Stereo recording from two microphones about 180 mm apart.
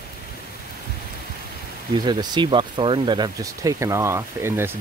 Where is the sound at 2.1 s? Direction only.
25° right (ahead or behind).